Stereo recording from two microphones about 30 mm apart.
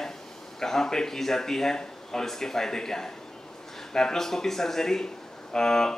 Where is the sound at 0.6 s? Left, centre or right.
Centre.